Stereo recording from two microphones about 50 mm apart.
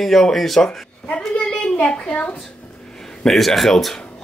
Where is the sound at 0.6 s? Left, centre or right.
Left.